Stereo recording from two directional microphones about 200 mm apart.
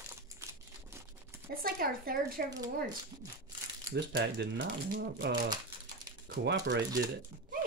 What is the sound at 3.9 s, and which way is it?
Speech, 55° right (ahead or behind).